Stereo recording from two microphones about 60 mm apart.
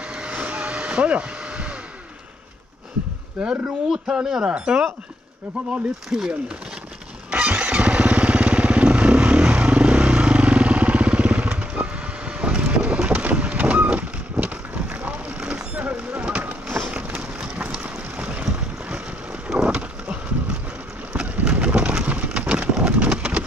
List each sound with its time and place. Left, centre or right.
0.0 s hair dryer: centre
3.4 s speech: centre
7.2 s motorcycle: right
14.4 s vehicle: right
15.5 s a sound: right
16.9 s vehicle: right
18.4 s boat: centre
21.1 s a sound: centre